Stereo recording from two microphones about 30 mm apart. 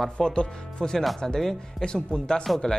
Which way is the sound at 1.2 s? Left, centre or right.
Centre.